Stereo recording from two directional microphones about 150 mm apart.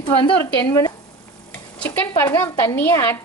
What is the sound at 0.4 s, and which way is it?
Speech, 20° left (ahead or behind).